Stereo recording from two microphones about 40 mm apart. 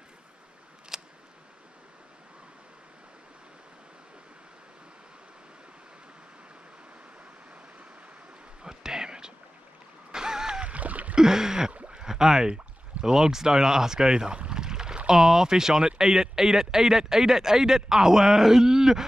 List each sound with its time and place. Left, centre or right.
0.9 s scissors: centre
8.6 s a sound: centre
10.6 s rowboat: right
11.1 s speech: centre
11.9 s rowboat: centre
13.0 s speech: centre
14.5 s pour: centre
15.0 s speech: centre